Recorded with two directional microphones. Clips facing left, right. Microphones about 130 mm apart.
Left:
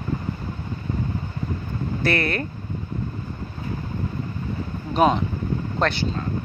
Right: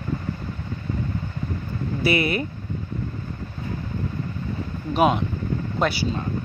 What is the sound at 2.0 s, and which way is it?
Speech, 10° right (ahead or behind).